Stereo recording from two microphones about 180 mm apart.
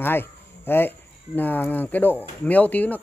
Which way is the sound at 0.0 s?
10° left (ahead or behind).